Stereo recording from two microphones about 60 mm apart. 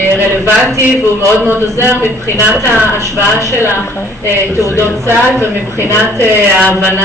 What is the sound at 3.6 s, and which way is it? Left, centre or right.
A man's voice, right.